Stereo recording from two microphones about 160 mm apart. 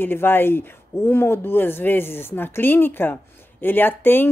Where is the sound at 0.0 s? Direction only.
15° left (ahead or behind).